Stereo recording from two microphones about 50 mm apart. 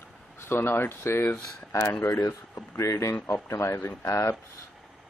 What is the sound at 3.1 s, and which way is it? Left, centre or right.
Speech, left.